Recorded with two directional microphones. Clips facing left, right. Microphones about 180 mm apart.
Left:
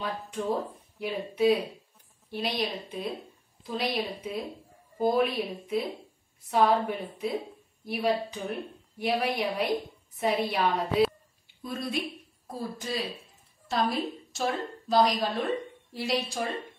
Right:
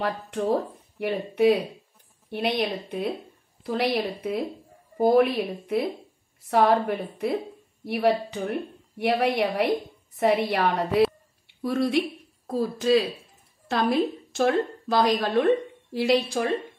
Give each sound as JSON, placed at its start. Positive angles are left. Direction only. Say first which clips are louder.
{"t": 0.0, "sound": "a woman's voice", "louder": "right 5 dB", "side_deg": -65}
{"t": 12.4, "sound": "speech", "louder": "right 12 dB", "side_deg": -85}
{"t": 13.7, "sound": "a woman's voice", "louder": "right 5 dB", "side_deg": -60}